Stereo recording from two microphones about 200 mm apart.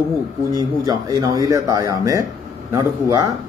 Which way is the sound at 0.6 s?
20° right (ahead or behind).